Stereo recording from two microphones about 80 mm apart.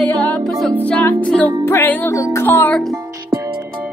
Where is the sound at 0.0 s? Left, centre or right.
Centre.